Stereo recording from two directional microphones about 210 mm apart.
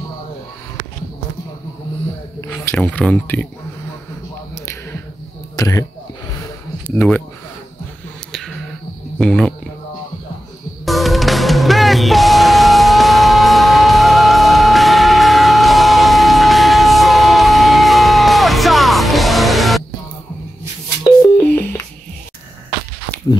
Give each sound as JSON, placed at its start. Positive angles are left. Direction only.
{"t": 2.5, "sound": "speech", "side_deg": 10}
{"t": 5.6, "sound": "speech", "side_deg": 15}
{"t": 7.0, "sound": "speech", "side_deg": 5}
{"t": 8.3, "sound": "a sound", "side_deg": 0}
{"t": 9.2, "sound": "speech", "side_deg": 5}
{"t": 10.9, "sound": "music", "side_deg": 0}
{"t": 21.5, "sound": "telephone dialing", "side_deg": 5}